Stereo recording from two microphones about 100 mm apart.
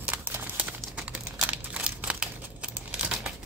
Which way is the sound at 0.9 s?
10° right (ahead or behind).